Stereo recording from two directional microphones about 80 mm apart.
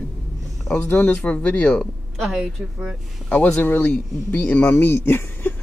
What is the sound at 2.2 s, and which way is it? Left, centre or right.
Speech, centre.